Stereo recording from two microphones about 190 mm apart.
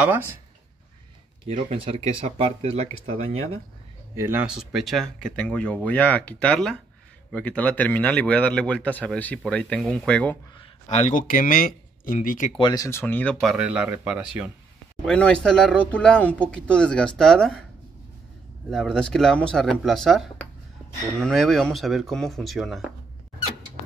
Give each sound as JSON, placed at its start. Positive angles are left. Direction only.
{"t": 0.0, "sound": "speech", "side_deg": -10}
{"t": 1.5, "sound": "speech", "side_deg": -30}
{"t": 4.1, "sound": "speech", "side_deg": -10}
{"t": 10.9, "sound": "speech", "side_deg": 40}
{"t": 12.5, "sound": "speech", "side_deg": 20}
{"t": 15.0, "sound": "speech", "side_deg": 5}
{"t": 18.7, "sound": "speech", "side_deg": 0}